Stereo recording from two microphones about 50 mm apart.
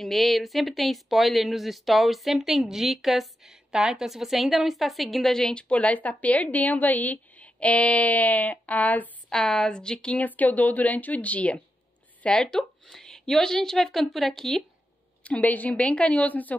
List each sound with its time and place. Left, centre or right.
0.0 s speech: centre
5.3 s a woman's voice: centre
9.3 s a woman's voice: centre
10.1 s a woman's voice: left
12.2 s speech: centre
15.2 s a woman's voice: left